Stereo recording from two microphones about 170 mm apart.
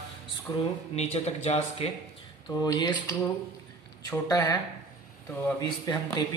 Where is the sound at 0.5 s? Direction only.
35° left (ahead or behind).